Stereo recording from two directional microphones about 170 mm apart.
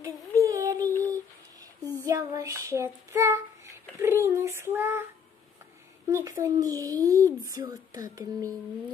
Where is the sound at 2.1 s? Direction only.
20° right (ahead or behind).